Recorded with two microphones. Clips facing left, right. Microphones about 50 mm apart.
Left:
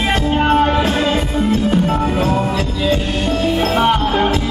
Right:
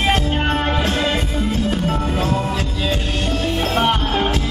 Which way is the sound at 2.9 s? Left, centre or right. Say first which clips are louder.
Left 4 dB; centre.